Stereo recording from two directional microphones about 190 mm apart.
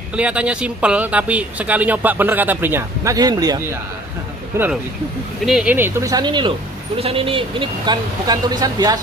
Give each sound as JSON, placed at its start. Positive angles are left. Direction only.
{"t": 0.1, "sound": "speech", "side_deg": -5}
{"t": 5.4, "sound": "speech", "side_deg": -5}